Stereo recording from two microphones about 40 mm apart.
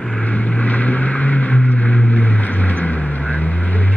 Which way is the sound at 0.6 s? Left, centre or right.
Left.